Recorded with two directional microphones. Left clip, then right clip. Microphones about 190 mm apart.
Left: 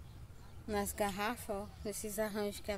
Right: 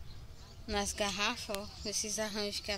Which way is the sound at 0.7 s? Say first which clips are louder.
Right 2 dB; 5° left (ahead or behind).